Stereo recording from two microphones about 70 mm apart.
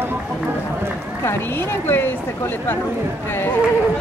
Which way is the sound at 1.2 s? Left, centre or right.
Left.